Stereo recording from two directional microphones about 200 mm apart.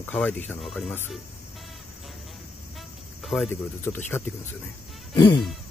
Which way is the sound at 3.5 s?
10° left (ahead or behind).